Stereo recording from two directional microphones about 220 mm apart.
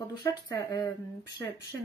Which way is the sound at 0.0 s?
15° left (ahead or behind).